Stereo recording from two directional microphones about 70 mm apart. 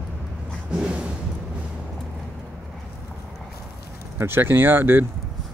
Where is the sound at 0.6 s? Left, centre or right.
Centre.